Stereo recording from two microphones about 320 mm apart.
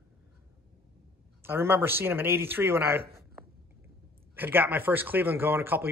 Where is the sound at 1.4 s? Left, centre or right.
Centre.